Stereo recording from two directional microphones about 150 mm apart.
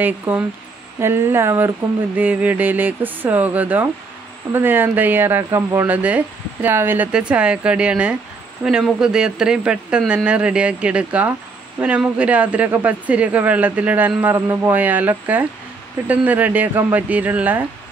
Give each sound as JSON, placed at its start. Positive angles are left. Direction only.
{"t": 0.0, "sound": "speech", "side_deg": -10}